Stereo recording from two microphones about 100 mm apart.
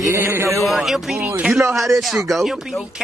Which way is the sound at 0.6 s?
Centre (ahead or behind).